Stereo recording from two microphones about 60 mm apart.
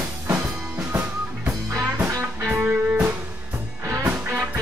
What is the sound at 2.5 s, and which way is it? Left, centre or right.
Music, right.